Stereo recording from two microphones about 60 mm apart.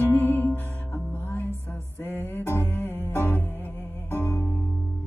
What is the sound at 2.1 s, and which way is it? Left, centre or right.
Music, left.